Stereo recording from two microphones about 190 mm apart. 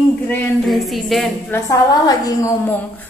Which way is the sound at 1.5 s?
20° left (ahead or behind).